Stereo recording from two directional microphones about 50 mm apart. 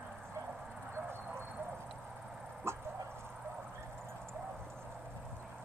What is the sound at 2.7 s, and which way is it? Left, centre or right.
Dog, right.